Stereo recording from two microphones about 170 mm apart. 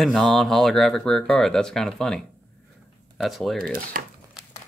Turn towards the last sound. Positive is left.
turn(degrees=-55)  # may be behind; listen again after turning